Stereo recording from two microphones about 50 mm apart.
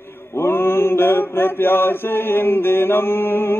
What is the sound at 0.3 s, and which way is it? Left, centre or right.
Mantra, left.